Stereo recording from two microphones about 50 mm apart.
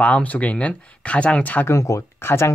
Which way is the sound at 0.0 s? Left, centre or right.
Left.